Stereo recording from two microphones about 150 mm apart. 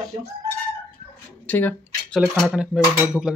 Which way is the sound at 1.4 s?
10° left (ahead or behind).